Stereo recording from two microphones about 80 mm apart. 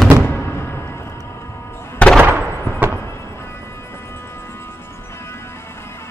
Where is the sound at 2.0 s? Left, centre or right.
Centre.